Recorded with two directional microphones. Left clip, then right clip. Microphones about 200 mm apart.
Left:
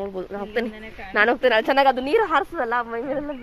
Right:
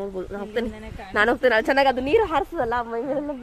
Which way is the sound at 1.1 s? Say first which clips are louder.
Left 1 dB; 20° right (ahead or behind).